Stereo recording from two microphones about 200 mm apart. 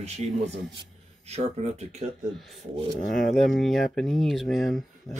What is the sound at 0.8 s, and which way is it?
Speech, 30° right (ahead or behind).